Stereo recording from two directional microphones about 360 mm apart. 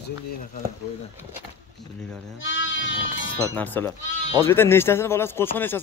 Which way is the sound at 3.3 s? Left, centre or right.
Centre.